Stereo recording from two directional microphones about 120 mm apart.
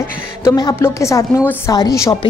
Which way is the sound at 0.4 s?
30° left (ahead or behind).